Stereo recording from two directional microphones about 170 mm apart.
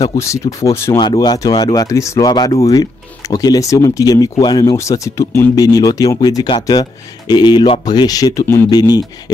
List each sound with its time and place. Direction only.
0.2 s speech: 20° left (ahead or behind)